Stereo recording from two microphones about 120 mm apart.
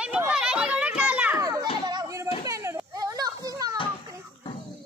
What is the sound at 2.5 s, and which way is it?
Children playing, 25° right (ahead or behind).